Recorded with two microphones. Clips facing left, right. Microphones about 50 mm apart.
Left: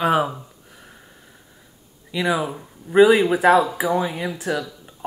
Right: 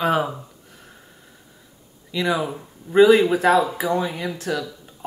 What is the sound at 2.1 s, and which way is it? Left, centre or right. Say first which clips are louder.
Speech: left 1 dB; centre.